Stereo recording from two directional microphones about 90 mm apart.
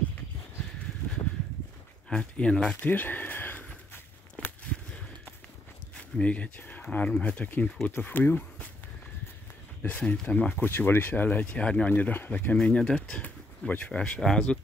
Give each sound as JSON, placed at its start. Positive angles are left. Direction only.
{"t": 2.0, "sound": "speech", "side_deg": 10}
{"t": 2.9, "sound": "walk", "side_deg": 20}
{"t": 6.1, "sound": "speech", "side_deg": 15}
{"t": 9.8, "sound": "speech", "side_deg": 15}